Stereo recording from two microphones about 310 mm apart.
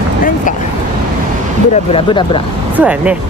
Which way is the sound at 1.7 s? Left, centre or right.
Centre.